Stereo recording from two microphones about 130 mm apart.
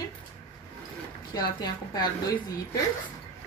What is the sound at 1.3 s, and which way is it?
Speech, 30° left (ahead or behind).